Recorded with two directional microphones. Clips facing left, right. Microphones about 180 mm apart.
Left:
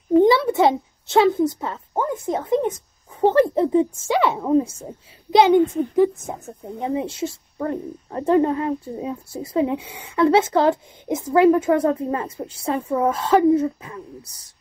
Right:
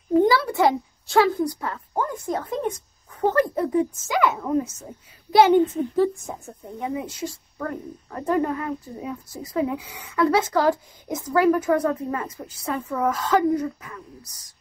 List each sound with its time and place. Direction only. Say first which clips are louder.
0.2 s a child's voice: left 3 dB; 20° left (ahead or behind)
5.3 s a woman's voice: left 1 dB; 15° left (ahead or behind)